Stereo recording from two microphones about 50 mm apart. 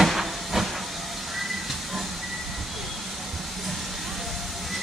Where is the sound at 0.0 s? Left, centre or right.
Centre.